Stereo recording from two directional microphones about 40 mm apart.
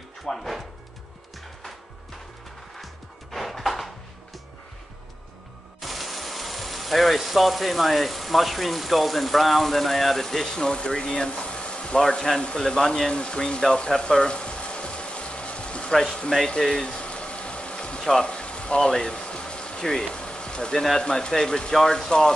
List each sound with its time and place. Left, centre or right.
0.2 s music: centre
2.8 s music: centre
5.8 s speech: centre; by 12.0 s left
12.0 s speech: centre
13.1 s frying: left
16.4 s boiling: centre
18.2 s music: left
18.8 s a sound: centre
21.0 s speech: centre